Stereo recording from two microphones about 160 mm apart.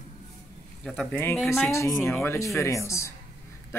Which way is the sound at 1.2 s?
15° left (ahead or behind).